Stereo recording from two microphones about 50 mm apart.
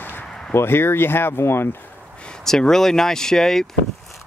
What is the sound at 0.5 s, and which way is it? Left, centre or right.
Speech, left.